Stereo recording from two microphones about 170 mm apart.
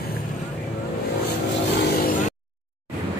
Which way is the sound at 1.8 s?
60° left (ahead or behind).